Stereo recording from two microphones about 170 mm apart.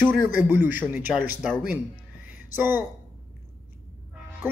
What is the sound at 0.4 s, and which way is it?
Speech, 10° right (ahead or behind).